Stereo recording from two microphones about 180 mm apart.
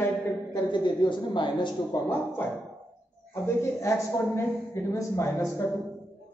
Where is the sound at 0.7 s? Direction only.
25° left (ahead or behind).